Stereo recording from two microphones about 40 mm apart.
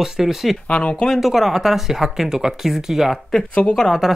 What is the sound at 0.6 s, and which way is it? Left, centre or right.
Speech, left.